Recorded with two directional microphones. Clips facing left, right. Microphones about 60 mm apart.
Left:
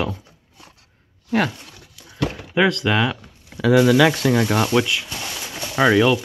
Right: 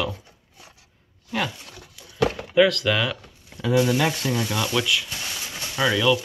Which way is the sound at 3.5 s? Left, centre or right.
Left.